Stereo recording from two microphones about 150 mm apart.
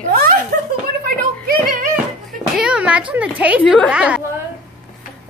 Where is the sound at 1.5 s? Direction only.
65° right (ahead or behind).